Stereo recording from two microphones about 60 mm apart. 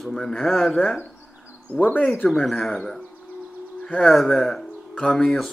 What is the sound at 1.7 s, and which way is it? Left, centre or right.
Speech, right.